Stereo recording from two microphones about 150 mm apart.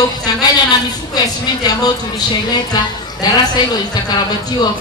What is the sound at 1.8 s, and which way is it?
A woman's voice, 25° left (ahead or behind).